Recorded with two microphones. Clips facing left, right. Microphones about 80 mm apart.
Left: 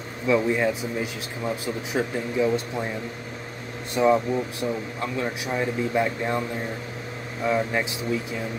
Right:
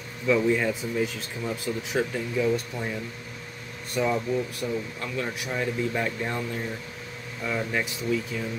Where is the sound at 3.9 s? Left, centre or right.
Left.